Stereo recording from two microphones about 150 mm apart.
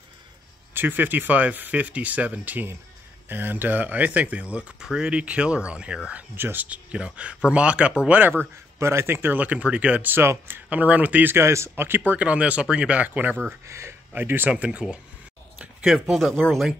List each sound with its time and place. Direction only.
0.7 s speech: 15° right (ahead or behind); by 16.7 s 5° left (ahead or behind)